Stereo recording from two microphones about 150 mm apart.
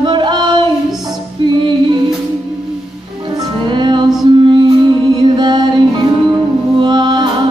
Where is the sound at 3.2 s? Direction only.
25° right (ahead or behind).